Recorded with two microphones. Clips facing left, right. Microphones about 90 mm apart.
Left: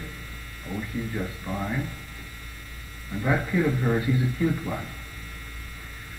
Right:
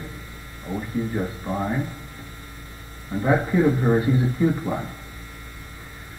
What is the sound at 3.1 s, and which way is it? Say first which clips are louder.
A man's voice: right 5 dB; 25° right (ahead or behind).